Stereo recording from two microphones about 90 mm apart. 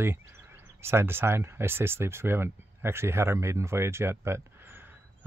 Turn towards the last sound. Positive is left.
turn(degrees=-30)  # may be behind; listen again after turning